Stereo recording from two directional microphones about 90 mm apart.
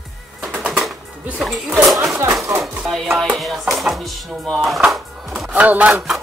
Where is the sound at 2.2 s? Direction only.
35° right (ahead or behind).